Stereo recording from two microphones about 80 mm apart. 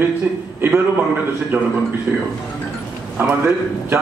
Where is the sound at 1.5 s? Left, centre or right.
Right.